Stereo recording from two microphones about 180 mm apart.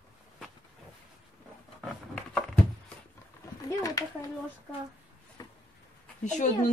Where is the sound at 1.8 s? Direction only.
5° left (ahead or behind).